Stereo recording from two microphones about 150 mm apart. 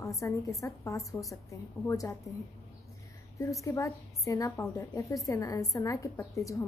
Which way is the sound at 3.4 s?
20° left (ahead or behind).